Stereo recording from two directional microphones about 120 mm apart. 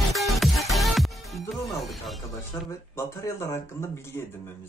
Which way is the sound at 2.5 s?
25° left (ahead or behind).